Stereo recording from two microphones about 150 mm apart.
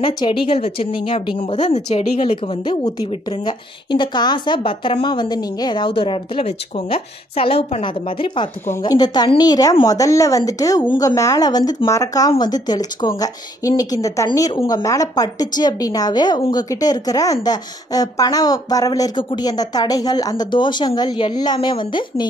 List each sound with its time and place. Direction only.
0.0 s a woman's voice: 35° left (ahead or behind)
1.6 s a woman's voice: 50° left (ahead or behind)
8.6 s a woman's voice: 20° left (ahead or behind)